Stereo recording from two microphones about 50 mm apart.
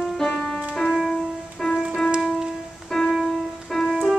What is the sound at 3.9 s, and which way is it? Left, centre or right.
Keyboard, centre.